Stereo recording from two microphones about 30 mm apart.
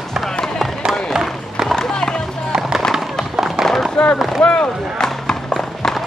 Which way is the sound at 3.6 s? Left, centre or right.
Right.